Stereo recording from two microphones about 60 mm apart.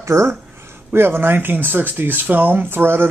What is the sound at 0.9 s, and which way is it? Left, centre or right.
Speech, right.